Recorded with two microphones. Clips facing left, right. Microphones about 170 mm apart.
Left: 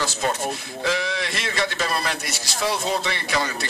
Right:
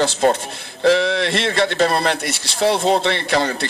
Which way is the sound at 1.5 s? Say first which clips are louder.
Right 8 dB; 60° right (ahead or behind).